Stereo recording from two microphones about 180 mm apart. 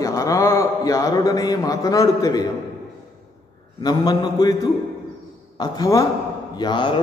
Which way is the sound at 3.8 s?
20° left (ahead or behind).